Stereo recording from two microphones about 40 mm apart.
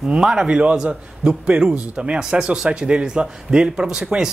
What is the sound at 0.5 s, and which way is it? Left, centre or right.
A man's voice, right.